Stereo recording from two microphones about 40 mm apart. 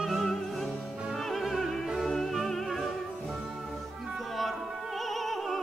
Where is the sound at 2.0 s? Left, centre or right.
Centre.